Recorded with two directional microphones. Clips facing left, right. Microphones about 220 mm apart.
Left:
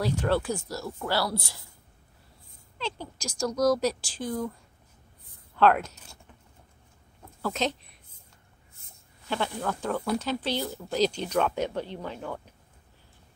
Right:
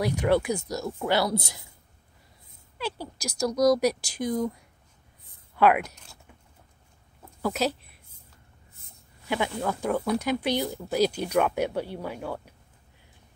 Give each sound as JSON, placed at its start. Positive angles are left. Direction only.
{"t": 0.2, "sound": "speech", "side_deg": -15}
{"t": 2.8, "sound": "speech", "side_deg": -10}
{"t": 5.6, "sound": "speech", "side_deg": -10}
{"t": 7.4, "sound": "speech", "side_deg": -5}
{"t": 9.3, "sound": "speech", "side_deg": -10}